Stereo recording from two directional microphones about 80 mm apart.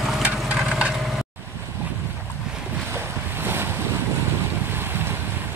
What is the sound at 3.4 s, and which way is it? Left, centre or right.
Waves, right.